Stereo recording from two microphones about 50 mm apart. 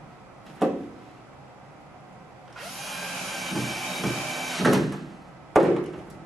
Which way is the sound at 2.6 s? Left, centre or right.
Centre.